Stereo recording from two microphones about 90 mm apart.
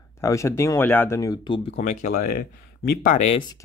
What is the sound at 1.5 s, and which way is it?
Speech, 70° left (ahead or behind).